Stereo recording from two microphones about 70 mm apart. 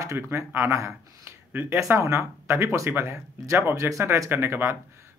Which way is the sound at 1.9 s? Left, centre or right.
Right.